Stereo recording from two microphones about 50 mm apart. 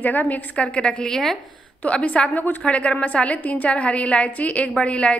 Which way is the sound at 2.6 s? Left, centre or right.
Left.